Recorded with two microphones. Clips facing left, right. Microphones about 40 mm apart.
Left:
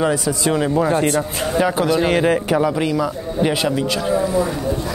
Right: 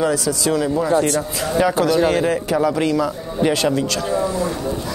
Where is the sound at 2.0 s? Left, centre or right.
Left.